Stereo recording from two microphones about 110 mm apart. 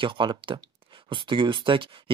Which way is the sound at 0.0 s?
50° right (ahead or behind).